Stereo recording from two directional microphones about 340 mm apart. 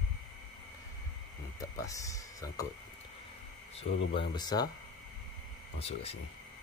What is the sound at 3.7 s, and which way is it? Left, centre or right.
Speech, centre.